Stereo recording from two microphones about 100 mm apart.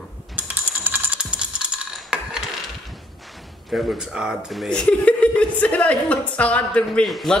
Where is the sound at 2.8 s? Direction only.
Centre (ahead or behind).